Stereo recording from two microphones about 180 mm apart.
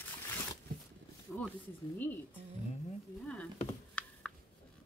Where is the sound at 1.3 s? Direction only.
5° left (ahead or behind).